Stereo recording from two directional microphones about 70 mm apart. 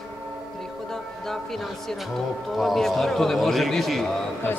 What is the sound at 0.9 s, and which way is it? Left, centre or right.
A man's voice, centre.